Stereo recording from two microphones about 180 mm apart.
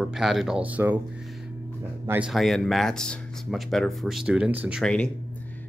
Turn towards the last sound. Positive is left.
turn(degrees=5)  # may be behind; listen again after turning